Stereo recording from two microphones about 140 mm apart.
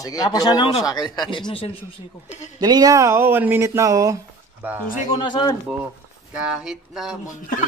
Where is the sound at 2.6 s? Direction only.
25° right (ahead or behind).